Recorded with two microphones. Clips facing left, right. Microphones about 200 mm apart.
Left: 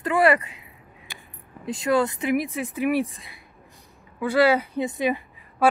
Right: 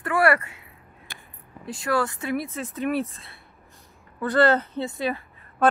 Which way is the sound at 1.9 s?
20° left (ahead or behind).